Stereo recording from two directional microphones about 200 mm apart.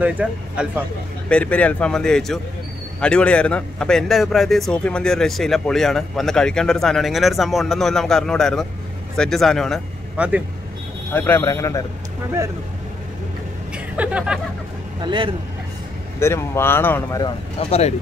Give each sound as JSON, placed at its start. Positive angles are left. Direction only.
{"t": 0.0, "sound": "speech", "side_deg": -5}
{"t": 1.3, "sound": "a man's voice", "side_deg": 5}
{"t": 11.1, "sound": "speech", "side_deg": 10}
{"t": 13.9, "sound": "a man's voice", "side_deg": -5}
{"t": 15.0, "sound": "speech", "side_deg": -25}
{"t": 16.2, "sound": "speech", "side_deg": 10}
{"t": 17.6, "sound": "speech", "side_deg": 30}